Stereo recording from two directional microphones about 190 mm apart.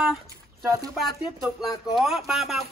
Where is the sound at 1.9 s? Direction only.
Centre (ahead or behind).